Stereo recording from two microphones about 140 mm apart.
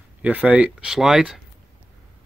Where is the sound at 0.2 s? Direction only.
10° right (ahead or behind).